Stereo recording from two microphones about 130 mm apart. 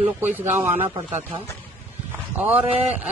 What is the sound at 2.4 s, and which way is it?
Speech, 15° right (ahead or behind).